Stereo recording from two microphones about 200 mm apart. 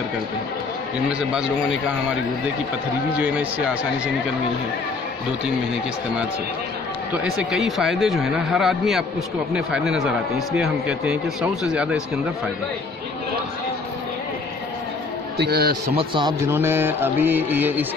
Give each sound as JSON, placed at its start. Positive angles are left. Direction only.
{"t": 1.3, "sound": "a man's voice", "side_deg": -5}
{"t": 3.2, "sound": "speech", "side_deg": -10}
{"t": 7.3, "sound": "a man's voice", "side_deg": 0}
{"t": 15.3, "sound": "a man's voice", "side_deg": -55}
{"t": 16.0, "sound": "speech", "side_deg": -25}
{"t": 16.4, "sound": "speech", "side_deg": -10}